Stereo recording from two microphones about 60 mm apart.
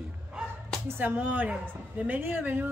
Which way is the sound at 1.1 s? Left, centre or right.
Right.